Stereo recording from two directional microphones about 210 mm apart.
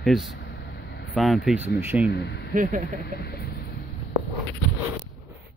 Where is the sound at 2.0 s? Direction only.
55° left (ahead or behind).